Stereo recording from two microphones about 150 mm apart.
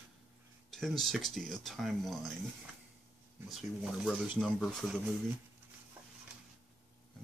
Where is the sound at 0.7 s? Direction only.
Centre (ahead or behind).